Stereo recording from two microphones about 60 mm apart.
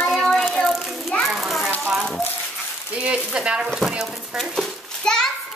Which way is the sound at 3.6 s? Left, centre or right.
Centre.